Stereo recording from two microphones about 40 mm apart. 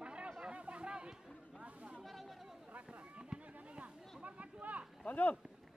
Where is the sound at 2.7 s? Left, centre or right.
Right.